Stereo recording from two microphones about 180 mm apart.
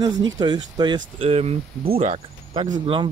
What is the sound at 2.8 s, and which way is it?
Speech, 30° right (ahead or behind).